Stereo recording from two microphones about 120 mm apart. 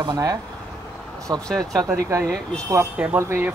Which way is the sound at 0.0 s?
30° right (ahead or behind).